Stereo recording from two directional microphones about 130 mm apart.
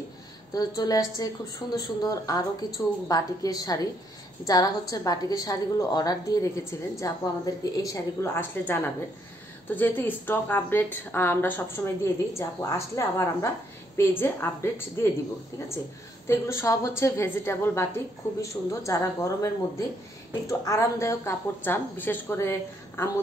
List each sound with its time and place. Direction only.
0.6 s a woman's voice: 30° left (ahead or behind)
16.3 s a woman's voice: 20° left (ahead or behind)